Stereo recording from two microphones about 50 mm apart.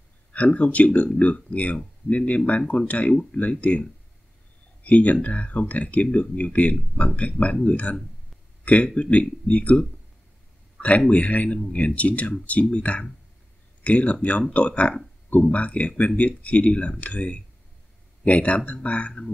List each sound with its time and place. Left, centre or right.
0.3 s speech: left
4.8 s speech: left